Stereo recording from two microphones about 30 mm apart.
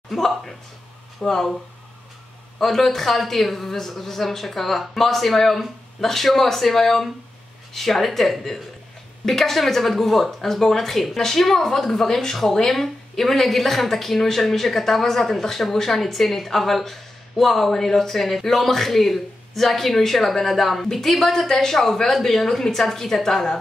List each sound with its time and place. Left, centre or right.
1.2 s speech: centre
2.6 s speech: centre